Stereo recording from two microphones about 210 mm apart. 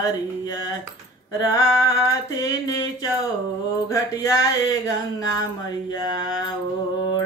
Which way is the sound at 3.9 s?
15° left (ahead or behind).